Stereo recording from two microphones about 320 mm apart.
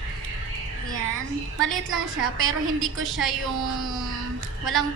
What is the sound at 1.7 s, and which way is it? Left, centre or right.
Speech, right.